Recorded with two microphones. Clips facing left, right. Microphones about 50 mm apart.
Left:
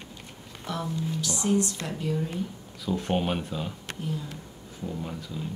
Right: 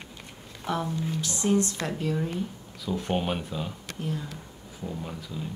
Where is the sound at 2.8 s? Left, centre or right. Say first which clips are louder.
Left 1 dB; centre.